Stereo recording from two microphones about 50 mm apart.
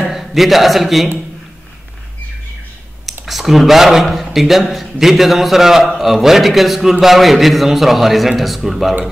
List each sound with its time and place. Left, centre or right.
0.1 s a man's voice: centre
3.3 s a man's voice: centre